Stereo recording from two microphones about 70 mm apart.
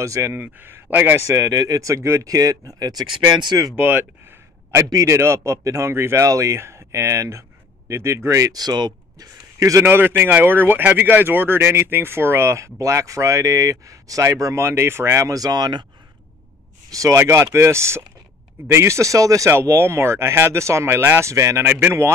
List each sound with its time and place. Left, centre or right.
0.0 s speech: right
0.4 s a man's voice: right
1.2 s speech: right
3.3 s speech: right
3.7 s a sound: right
4.8 s speech: right
8.5 s speech: right
9.6 s a man's voice: right
9.8 s speech: right
16.9 s speech: right
17.2 s speech: right
19.5 s speech: right
21.6 s a man's voice: right